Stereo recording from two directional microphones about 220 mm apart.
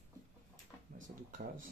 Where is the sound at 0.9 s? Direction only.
35° right (ahead or behind).